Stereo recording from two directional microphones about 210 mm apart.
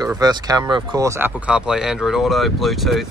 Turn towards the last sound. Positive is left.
turn(degrees=0)  # may be behind; listen again after turning